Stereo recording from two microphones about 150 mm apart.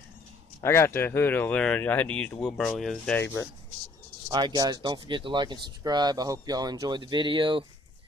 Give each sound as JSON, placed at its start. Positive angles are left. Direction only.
{"t": 0.6, "sound": "speech", "side_deg": 15}
{"t": 4.3, "sound": "speech", "side_deg": -30}